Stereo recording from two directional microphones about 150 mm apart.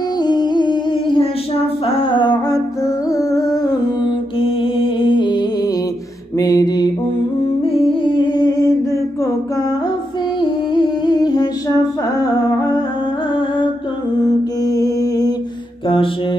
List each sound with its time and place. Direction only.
0.2 s music: 30° left (ahead or behind)
1.9 s humming: 35° left (ahead or behind)
3.1 s music: 20° left (ahead or behind)
4.4 s music: 35° left (ahead or behind)
6.3 s a sound: 25° left (ahead or behind)
7.6 s music: 40° left (ahead or behind)
10.4 s music: 30° left (ahead or behind)
14.2 s mantra: 25° left (ahead or behind)